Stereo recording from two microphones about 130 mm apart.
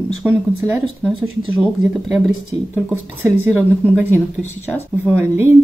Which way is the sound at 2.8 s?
15° right (ahead or behind).